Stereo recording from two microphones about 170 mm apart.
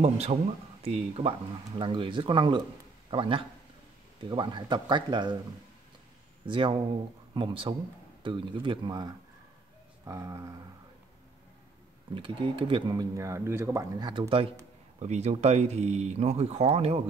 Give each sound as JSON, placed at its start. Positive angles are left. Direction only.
{"t": 0.0, "sound": "a man's voice", "side_deg": -40}
{"t": 6.4, "sound": "speech", "side_deg": -30}
{"t": 12.1, "sound": "speech", "side_deg": -30}